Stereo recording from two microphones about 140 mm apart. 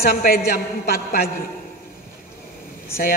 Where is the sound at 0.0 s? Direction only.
90° left.